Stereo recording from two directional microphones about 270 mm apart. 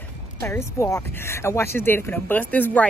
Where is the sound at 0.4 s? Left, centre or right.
Centre.